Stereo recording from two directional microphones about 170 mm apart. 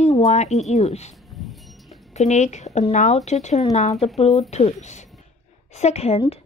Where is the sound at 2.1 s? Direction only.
45° left (ahead or behind).